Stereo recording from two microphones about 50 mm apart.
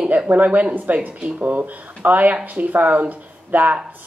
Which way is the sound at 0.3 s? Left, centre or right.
Right.